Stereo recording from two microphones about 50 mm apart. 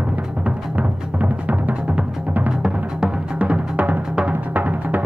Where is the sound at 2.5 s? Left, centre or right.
Centre.